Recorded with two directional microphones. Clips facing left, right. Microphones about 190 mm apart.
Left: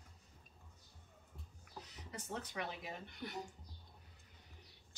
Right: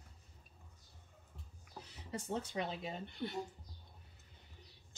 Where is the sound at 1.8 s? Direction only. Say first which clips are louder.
Right 6 dB; 30° right (ahead or behind).